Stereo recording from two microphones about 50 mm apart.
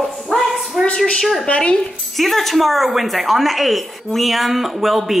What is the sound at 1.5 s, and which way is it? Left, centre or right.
Speech, left.